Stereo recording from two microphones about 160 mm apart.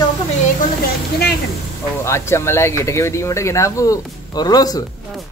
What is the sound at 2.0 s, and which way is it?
Speech, 15° left (ahead or behind).